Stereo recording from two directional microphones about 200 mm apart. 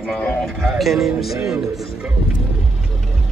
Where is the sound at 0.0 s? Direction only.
5° left (ahead or behind).